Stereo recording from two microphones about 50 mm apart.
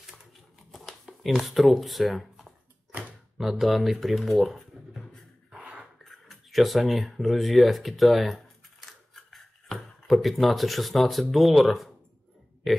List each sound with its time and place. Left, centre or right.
0.7 s shuffling cards: centre
2.9 s a sound: right
3.3 s speech: centre
4.3 s a sound: centre
5.6 s dog: right
6.0 s speech: centre
8.8 s shuffling cards: centre
10.4 s speech: centre